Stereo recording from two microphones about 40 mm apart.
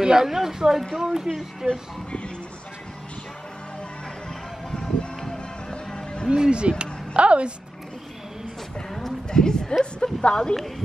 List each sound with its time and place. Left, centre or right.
0.0 s speech: centre
5.2 s music: centre
6.3 s a woman's voice: right
9.3 s speech: centre